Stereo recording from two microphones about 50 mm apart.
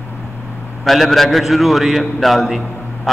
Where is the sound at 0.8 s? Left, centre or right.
Centre.